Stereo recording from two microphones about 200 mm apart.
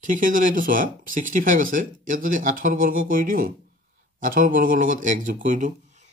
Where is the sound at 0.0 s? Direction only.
40° right (ahead or behind).